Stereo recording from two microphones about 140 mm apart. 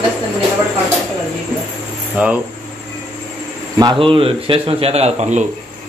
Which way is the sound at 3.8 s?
35° right (ahead or behind).